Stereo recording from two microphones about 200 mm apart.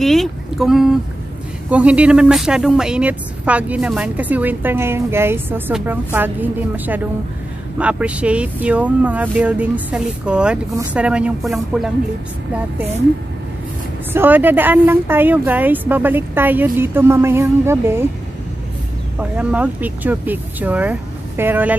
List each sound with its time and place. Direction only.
0.0 s a woman's voice: centre (ahead or behind)
14.1 s speech: 10° right (ahead or behind)
19.1 s speech: 5° right (ahead or behind)